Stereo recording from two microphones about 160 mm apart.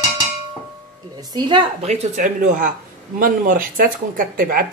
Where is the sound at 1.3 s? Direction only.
30° right (ahead or behind).